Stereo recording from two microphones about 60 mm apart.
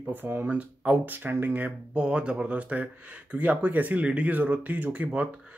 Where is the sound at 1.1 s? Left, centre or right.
Right.